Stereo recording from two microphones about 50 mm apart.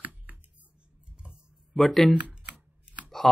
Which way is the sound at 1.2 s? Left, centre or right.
Right.